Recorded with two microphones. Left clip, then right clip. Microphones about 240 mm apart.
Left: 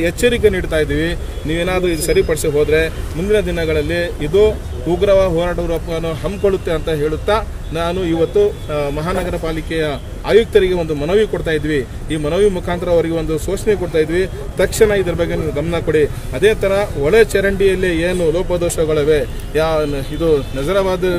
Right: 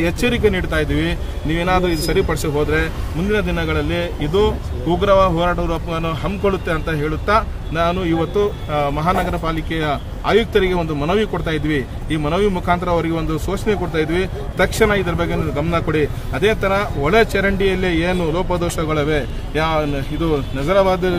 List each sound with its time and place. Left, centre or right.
0.0 s speech: centre
5.0 s speech: centre